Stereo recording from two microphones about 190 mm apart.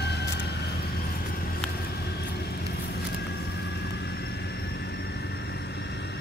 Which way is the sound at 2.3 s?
60° left (ahead or behind).